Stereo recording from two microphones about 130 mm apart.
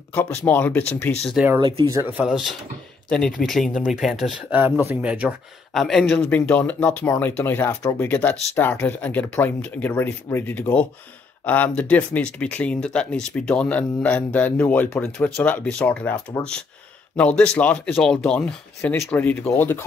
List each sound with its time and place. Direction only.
0.1 s speech: 15° left (ahead or behind)
1.6 s speech: 35° right (ahead or behind)
2.1 s speech: 5° right (ahead or behind)
3.1 s speech: 10° left (ahead or behind)
4.6 s speech: 15° right (ahead or behind)
5.8 s speech: centre (ahead or behind)
17.4 s speech: 10° left (ahead or behind)